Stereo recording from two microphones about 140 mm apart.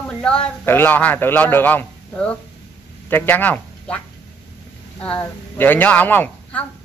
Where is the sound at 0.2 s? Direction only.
10° left (ahead or behind).